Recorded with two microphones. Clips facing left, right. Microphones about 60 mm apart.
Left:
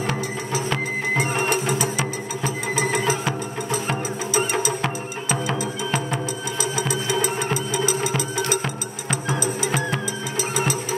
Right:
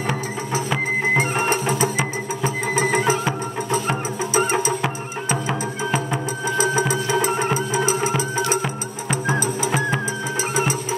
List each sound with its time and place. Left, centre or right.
1.1 s music: right
2.7 s music: right
4.3 s music: right
4.8 s music: centre
6.6 s music: right
9.1 s music: right